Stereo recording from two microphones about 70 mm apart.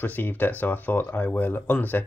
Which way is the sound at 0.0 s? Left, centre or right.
Left.